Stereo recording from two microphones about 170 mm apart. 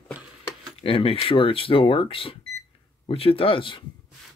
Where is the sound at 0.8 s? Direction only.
30° left (ahead or behind).